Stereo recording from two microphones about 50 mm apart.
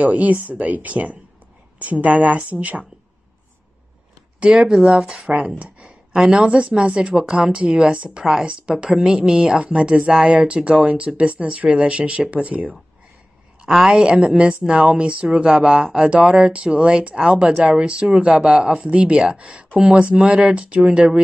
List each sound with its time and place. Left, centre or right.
0.0 s speech: right
4.4 s a woman's voice: centre
5.6 s a sound: right
6.3 s a woman's voice: right
13.7 s a woman's voice: centre
13.9 s speech: centre
15.4 s a woman's voice: centre